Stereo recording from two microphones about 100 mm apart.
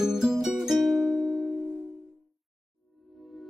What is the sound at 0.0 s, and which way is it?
Music, 5° right (ahead or behind).